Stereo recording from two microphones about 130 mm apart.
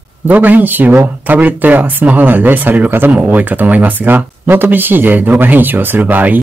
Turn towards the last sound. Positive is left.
turn(degrees=-15)  # may be behind; listen again after turning